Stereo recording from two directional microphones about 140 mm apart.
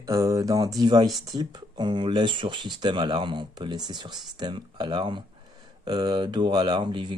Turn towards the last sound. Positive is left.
turn(degrees=-35)  # may be behind; listen again after turning